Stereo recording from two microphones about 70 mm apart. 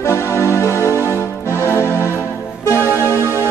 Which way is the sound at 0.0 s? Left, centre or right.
Left.